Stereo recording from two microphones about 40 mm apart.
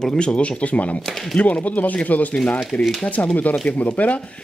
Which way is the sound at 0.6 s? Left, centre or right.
Left.